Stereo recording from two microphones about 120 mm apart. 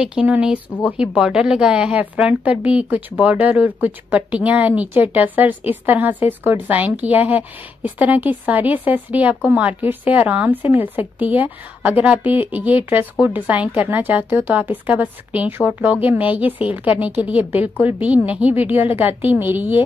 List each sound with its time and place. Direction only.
0.0 s a woman's voice: 10° right (ahead or behind)